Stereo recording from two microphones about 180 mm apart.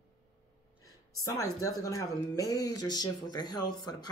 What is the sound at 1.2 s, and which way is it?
Speech, 20° left (ahead or behind).